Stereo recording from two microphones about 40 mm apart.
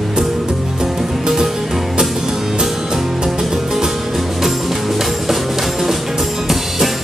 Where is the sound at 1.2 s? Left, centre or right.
Centre.